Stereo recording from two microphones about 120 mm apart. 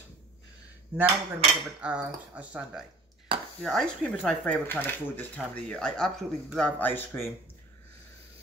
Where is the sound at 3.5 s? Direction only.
5° left (ahead or behind).